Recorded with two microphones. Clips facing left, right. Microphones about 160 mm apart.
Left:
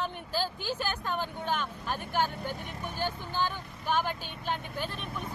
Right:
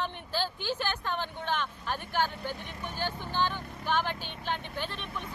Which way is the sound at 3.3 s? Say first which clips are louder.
Right 3 dB; 45° left (ahead or behind).